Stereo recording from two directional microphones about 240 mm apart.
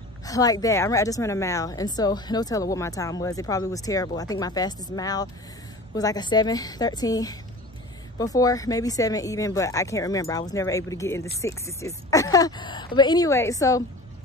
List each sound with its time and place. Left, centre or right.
0.2 s a woman's voice: centre